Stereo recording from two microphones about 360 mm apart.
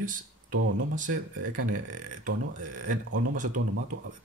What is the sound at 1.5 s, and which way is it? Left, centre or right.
Speech, right.